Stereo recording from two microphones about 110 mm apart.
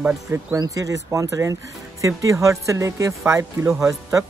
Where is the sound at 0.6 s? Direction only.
30° right (ahead or behind).